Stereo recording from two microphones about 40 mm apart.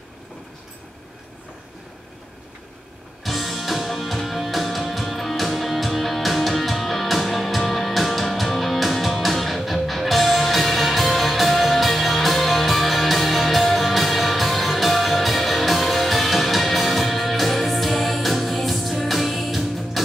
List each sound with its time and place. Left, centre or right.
3.3 s music: centre